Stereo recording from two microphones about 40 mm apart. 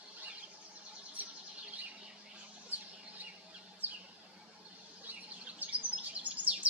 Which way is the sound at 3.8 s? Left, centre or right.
Right.